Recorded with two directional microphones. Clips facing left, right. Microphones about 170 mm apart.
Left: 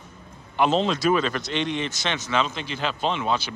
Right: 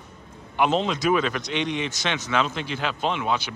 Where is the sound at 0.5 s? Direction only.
15° right (ahead or behind).